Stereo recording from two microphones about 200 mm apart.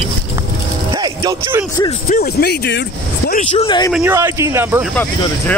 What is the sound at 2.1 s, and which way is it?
Speech, 50° left (ahead or behind).